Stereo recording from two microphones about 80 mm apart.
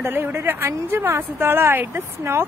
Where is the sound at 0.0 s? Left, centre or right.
Right.